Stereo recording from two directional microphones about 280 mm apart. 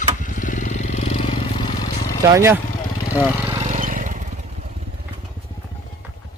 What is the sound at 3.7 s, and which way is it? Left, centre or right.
Vehicle, right.